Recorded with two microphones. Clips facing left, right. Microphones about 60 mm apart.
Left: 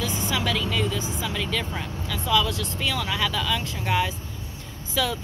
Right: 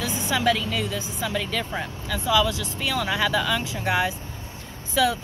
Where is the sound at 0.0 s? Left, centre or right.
Centre.